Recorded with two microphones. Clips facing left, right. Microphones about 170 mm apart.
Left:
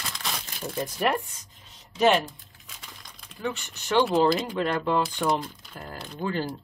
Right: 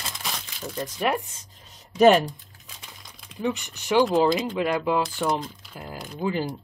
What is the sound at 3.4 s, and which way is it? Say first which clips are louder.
Speech: right 4 dB; 15° right (ahead or behind).